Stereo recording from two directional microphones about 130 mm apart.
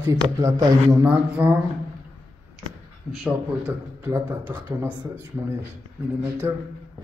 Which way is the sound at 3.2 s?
5° right (ahead or behind).